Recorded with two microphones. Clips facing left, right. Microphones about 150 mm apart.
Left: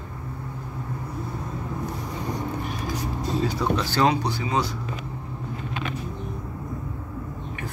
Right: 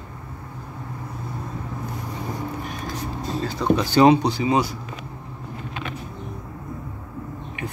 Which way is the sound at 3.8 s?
15° right (ahead or behind).